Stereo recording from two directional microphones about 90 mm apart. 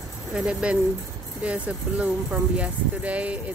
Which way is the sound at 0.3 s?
10° right (ahead or behind).